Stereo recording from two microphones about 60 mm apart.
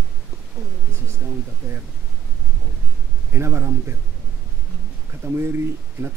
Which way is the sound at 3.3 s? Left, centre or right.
Right.